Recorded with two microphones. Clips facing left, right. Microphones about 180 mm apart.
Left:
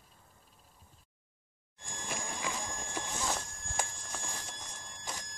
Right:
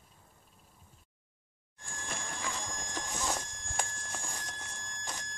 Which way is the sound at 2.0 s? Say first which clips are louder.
Left 2 dB; 15° left (ahead or behind).